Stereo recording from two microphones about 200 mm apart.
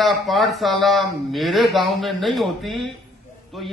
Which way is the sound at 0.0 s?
Centre (ahead or behind).